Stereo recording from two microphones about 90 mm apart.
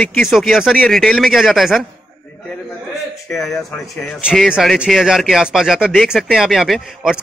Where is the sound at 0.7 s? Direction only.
10° left (ahead or behind).